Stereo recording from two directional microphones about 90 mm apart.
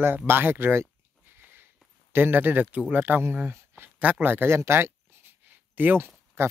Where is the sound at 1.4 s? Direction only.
20° right (ahead or behind).